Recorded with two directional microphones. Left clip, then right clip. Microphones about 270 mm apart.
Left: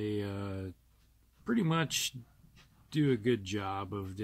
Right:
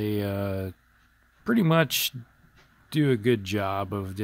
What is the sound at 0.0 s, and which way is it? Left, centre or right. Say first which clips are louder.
Speech: right 8 dB; right.